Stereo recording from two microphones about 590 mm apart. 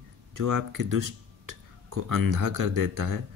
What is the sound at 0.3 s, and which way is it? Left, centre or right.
Speech, right.